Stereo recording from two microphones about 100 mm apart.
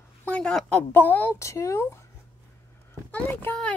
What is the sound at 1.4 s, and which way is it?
Speech, 30° left (ahead or behind).